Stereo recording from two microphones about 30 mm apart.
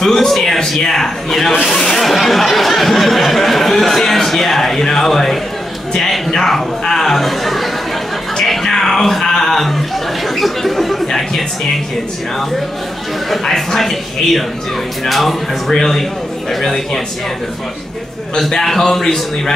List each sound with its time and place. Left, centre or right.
0.0 s speech: centre
1.9 s a sound: centre
6.1 s speech: centre
8.5 s music: centre
9.6 s speech: centre
13.3 s a sound: centre
13.7 s speech: centre
15.0 s a sound: centre
15.7 s speech: centre
18.6 s speech: centre